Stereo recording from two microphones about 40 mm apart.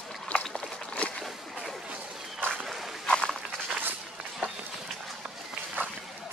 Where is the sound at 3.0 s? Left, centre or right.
Centre.